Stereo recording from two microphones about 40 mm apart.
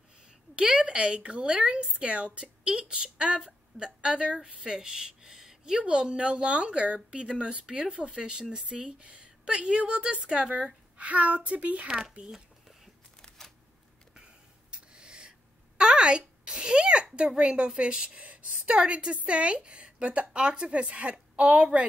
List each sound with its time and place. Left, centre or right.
0.6 s a woman's voice: right
5.8 s speech: right
11.0 s speech: right
11.9 s speech: centre
14.7 s a sound: right
17.4 s speech: right
18.2 s a sound: right
18.8 s speech: right